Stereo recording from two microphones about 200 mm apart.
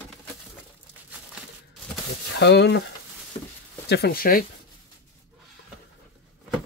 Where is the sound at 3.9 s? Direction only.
50° left (ahead or behind).